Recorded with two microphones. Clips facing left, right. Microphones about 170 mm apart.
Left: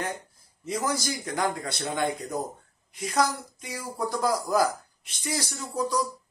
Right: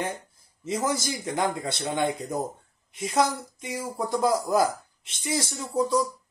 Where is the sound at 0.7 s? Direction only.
25° right (ahead or behind).